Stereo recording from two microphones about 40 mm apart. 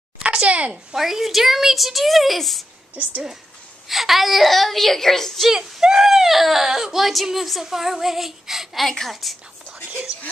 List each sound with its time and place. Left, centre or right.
0.2 s a sound: right
0.9 s speech: centre
3.0 s a woman's voice: right
3.9 s speech: centre
5.8 s speech: centre